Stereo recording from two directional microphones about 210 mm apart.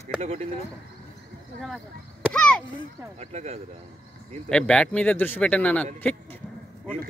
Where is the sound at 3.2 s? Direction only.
30° right (ahead or behind).